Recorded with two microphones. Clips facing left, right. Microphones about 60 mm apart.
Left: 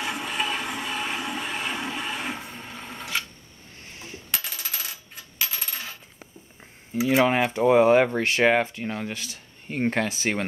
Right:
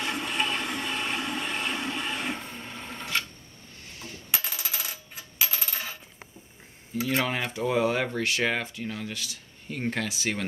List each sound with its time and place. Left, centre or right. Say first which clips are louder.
0.0 s a sound: left 1 dB; centre
4.3 s coin: even; centre
7.0 s cutlery: left 7 dB; centre
7.5 s speech: left 9 dB; left